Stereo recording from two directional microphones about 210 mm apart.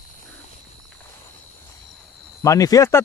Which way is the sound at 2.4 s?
15° left (ahead or behind).